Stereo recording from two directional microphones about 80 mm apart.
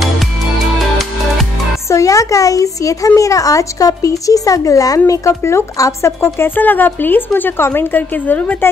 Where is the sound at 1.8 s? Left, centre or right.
Left.